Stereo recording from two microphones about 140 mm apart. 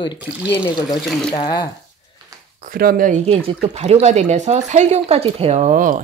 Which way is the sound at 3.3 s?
45° right (ahead or behind).